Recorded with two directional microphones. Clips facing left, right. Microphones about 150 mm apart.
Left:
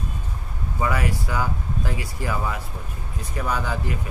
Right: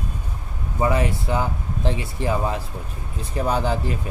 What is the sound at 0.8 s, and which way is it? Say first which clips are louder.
Speech: right 4 dB; 25° right (ahead or behind).